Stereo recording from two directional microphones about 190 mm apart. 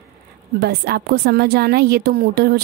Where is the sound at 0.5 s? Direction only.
55° right (ahead or behind).